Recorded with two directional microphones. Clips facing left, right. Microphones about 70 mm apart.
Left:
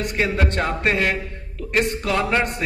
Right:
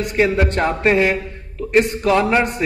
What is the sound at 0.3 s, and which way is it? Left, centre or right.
Speech, centre.